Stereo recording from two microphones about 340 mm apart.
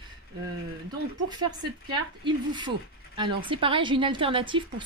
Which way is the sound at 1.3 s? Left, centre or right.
Centre.